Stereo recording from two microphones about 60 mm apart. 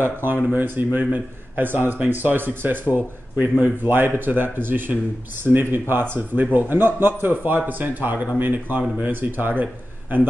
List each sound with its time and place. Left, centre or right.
0.0 s speech: right
3.3 s speech: right
3.9 s speech: right